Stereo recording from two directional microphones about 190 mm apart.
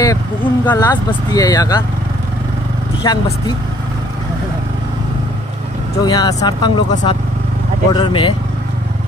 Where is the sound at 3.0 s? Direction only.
20° left (ahead or behind).